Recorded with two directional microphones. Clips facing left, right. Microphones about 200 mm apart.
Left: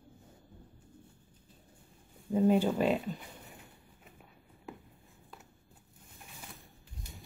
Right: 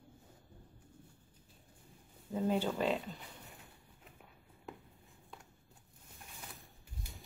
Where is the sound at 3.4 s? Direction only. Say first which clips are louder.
Left 3 dB; centre (ahead or behind).